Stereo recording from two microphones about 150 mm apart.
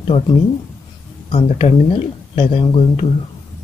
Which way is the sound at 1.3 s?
40° left (ahead or behind).